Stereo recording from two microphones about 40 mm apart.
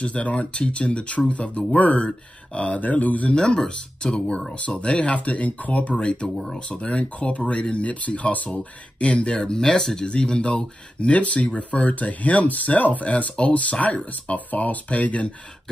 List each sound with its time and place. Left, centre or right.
0.0 s speech: left
3.3 s speech: left
10.0 s speech: left